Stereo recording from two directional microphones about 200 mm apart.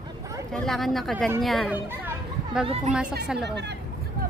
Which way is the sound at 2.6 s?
30° right (ahead or behind).